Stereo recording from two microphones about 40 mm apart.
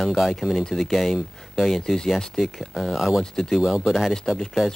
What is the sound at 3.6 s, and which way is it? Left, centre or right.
Speech, centre.